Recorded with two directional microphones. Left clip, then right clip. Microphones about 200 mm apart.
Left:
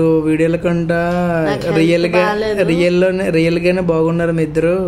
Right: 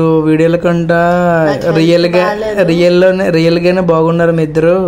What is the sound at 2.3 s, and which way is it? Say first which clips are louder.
Speech: right 2 dB; 10° left (ahead or behind).